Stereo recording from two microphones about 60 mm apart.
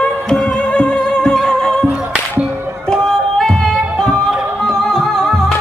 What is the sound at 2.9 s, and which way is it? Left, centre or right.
Music, centre.